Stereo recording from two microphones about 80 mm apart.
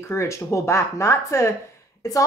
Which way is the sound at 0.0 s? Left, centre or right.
Left.